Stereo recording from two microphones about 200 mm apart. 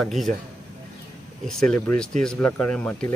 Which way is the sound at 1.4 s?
Centre (ahead or behind).